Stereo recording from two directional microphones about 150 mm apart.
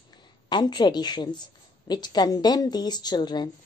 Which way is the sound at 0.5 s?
30° left (ahead or behind).